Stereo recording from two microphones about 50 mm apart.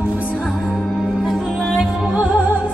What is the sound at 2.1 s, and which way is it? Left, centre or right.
Music, right.